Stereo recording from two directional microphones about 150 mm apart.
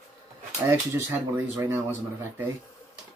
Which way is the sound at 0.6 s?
20° right (ahead or behind).